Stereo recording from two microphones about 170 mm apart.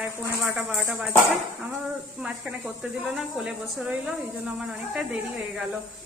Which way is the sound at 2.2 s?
5° right (ahead or behind).